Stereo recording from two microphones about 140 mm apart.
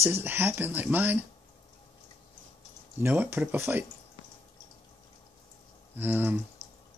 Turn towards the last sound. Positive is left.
turn(degrees=-15)  # may be behind; listen again after turning